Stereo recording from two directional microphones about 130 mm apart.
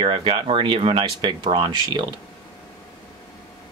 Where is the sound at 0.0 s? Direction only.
40° right (ahead or behind).